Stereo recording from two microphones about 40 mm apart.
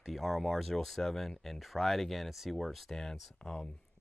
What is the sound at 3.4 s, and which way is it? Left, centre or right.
Speech, left.